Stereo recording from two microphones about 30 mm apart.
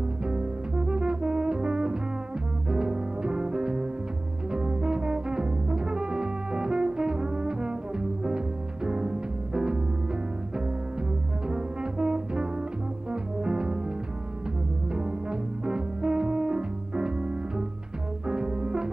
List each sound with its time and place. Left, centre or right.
0.3 s brass instrument: right
2.7 s music: right
4.5 s brass instrument: right
8.8 s music: right
11.4 s brass instrument: right
13.1 s music: right
14.9 s music: right